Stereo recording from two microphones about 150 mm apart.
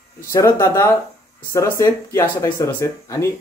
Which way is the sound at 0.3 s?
20° left (ahead or behind).